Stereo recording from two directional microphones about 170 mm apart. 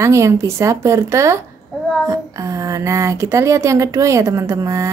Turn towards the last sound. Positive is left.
turn(degrees=-20)  # may be behind; listen again after turning